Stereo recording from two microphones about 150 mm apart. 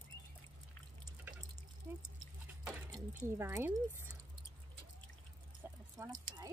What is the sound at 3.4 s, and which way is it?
Speech, 15° right (ahead or behind).